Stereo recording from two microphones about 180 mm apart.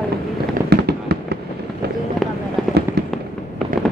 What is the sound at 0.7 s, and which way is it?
Fireworks, 65° right (ahead or behind).